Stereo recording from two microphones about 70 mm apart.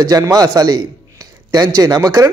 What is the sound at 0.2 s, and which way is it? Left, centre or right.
Speech, right.